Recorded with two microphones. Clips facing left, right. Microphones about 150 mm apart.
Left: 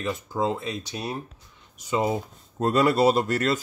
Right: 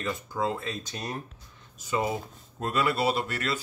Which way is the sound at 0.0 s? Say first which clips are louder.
Left 3 dB; 20° left (ahead or behind).